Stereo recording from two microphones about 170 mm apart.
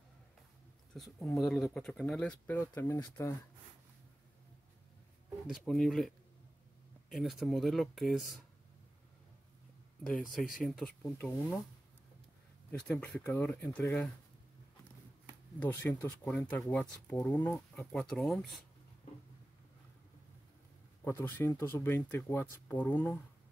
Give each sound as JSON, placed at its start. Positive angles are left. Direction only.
{"t": 1.2, "sound": "speech", "side_deg": 0}
{"t": 5.5, "sound": "speech", "side_deg": 0}
{"t": 10.3, "sound": "speech", "side_deg": 0}
{"t": 12.8, "sound": "speech", "side_deg": 5}
{"t": 15.7, "sound": "speech", "side_deg": 15}
{"t": 17.2, "sound": "speech", "side_deg": 20}
{"t": 17.7, "sound": "speech", "side_deg": 0}
{"t": 21.0, "sound": "speech", "side_deg": 15}